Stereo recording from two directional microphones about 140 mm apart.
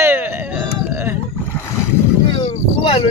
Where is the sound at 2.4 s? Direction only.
40° left (ahead or behind).